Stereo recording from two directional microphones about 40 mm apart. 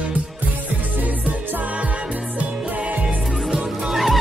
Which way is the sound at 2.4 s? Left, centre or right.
Right.